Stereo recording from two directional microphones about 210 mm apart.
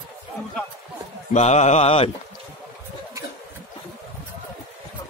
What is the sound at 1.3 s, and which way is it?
Speech, 35° left (ahead or behind).